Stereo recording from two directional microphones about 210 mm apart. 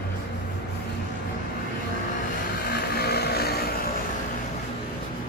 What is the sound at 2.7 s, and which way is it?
Vehicle, 50° left (ahead or behind).